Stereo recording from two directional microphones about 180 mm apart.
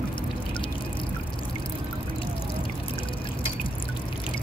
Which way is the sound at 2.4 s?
30° left (ahead or behind).